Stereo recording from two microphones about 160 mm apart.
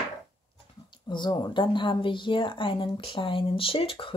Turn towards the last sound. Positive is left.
turn(degrees=35)  # may be behind; listen again after turning